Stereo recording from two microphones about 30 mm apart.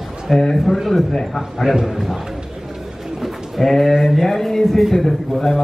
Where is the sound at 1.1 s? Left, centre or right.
Centre.